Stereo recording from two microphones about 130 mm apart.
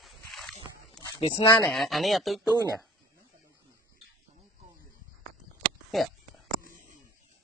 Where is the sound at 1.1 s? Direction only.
45° left (ahead or behind).